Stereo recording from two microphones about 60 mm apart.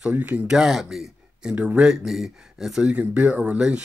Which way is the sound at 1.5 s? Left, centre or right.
Right.